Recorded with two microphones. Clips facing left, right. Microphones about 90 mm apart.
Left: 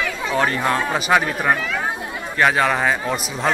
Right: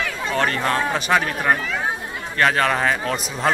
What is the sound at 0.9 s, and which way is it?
Speech, 5° left (ahead or behind).